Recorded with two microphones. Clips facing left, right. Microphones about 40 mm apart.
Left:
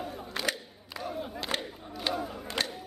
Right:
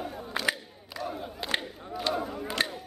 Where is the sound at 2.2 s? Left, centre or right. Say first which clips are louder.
Right 3 dB; centre.